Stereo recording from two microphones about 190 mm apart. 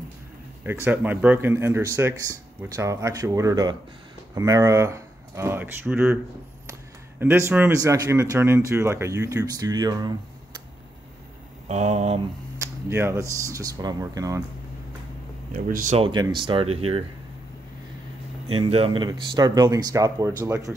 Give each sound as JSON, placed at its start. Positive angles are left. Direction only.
{"t": 0.8, "sound": "speech", "side_deg": -10}
{"t": 11.6, "sound": "speech", "side_deg": -35}
{"t": 12.5, "sound": "speech", "side_deg": -15}
{"t": 15.5, "sound": "speech", "side_deg": -45}
{"t": 16.0, "sound": "speech", "side_deg": -25}
{"t": 18.5, "sound": "speech", "side_deg": -30}